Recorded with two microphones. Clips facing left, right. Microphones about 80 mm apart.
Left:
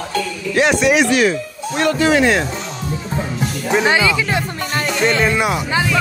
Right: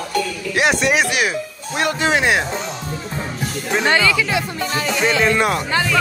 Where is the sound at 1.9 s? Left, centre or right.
Right.